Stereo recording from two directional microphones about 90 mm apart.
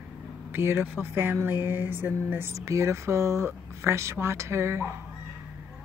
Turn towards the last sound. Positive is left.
turn(degrees=-30)  # may be behind; listen again after turning